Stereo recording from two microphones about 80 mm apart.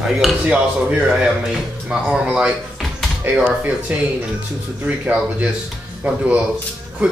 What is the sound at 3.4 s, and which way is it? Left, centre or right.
A man's voice, centre.